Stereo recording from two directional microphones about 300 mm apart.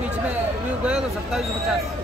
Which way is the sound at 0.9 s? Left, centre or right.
Centre.